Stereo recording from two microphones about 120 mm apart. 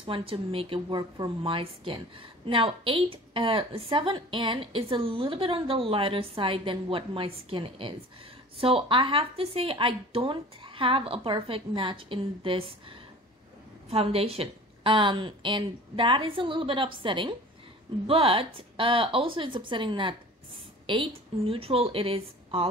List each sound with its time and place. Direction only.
0.0 s speech: 45° right (ahead or behind)
13.8 s speech: 55° right (ahead or behind)